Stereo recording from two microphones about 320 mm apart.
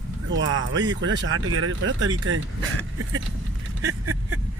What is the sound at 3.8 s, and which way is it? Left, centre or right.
Vehicle, right.